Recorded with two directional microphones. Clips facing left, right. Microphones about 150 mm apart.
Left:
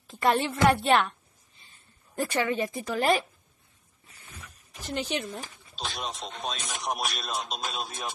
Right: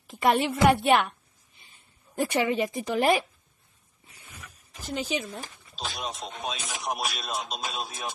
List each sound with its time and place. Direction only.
0.0 s music: 15° right (ahead or behind)
0.5 s speech: 15° right (ahead or behind)
2.1 s speech: 15° right (ahead or behind)
4.8 s speech: centre (ahead or behind)